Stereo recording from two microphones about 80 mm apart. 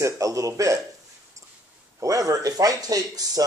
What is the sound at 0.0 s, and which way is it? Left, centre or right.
Speech, right.